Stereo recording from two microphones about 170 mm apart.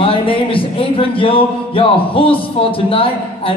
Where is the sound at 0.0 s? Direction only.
30° left (ahead or behind).